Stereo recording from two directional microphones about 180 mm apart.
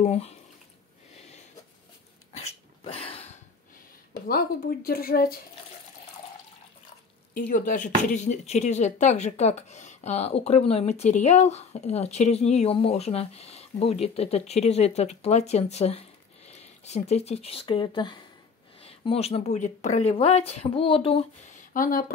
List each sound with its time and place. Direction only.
0.0 s speech: 35° left (ahead or behind)
1.1 s a sound: 35° left (ahead or behind)
2.3 s dog: 35° left (ahead or behind)
4.3 s speech: 55° left (ahead or behind)
7.3 s speech: 50° left (ahead or behind); by 21.3 s 30° left (ahead or behind)
21.7 s speech: 50° left (ahead or behind)